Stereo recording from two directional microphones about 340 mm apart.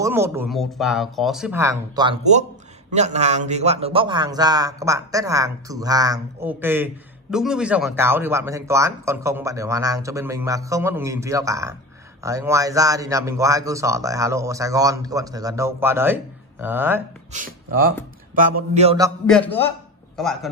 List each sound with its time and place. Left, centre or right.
0.0 s a man's voice: centre
18.3 s a man's voice: right
19.2 s a man's voice: centre